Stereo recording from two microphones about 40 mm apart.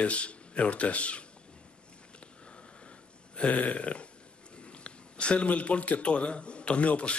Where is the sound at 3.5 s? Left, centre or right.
Left.